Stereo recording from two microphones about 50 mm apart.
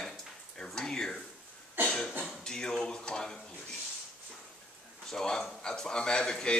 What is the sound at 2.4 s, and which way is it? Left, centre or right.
Speech, centre.